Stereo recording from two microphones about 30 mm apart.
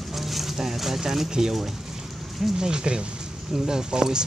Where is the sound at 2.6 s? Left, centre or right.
Right.